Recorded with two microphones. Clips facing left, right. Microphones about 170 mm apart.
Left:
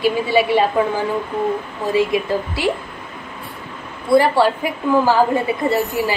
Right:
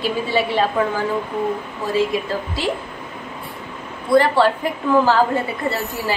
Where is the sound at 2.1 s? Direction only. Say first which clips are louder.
Left 3 dB; 15° left (ahead or behind).